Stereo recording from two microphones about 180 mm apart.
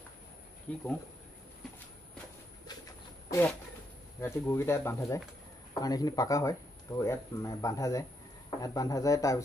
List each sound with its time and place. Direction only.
0.7 s speech: 10° left (ahead or behind)
3.3 s speech: 15° left (ahead or behind)